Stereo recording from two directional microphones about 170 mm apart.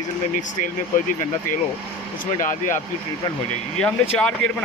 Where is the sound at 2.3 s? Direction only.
50° left (ahead or behind).